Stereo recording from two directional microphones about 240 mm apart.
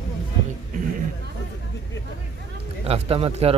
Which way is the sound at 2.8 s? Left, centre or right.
Right.